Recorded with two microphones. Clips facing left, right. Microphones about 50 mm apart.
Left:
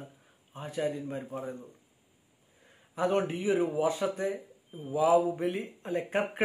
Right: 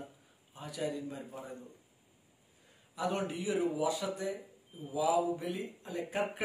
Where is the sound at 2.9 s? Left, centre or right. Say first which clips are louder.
Left 6 dB; left.